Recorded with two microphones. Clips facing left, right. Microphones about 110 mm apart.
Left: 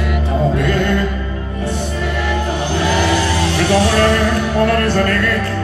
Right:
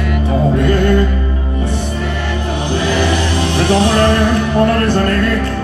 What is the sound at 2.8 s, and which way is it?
Music, 20° right (ahead or behind).